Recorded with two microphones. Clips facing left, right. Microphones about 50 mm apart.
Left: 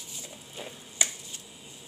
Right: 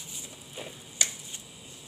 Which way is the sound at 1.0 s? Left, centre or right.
Centre.